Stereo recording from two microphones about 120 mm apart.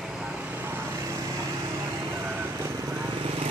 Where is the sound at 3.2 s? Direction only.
50° right (ahead or behind).